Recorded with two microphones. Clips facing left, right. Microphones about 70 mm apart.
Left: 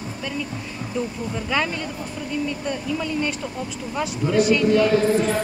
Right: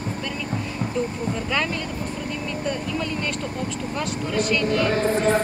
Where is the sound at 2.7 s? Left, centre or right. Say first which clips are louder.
Left 1 dB; centre.